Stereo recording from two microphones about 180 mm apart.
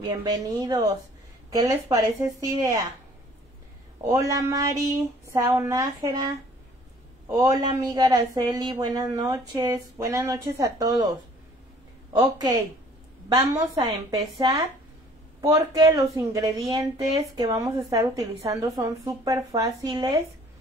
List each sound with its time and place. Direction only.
0.0 s speech: 20° right (ahead or behind)
4.1 s speech: 20° right (ahead or behind)
7.2 s speech: 20° right (ahead or behind)
12.1 s speech: 20° right (ahead or behind)